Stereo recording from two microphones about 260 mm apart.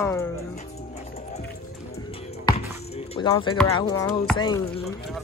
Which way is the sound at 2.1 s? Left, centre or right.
Left.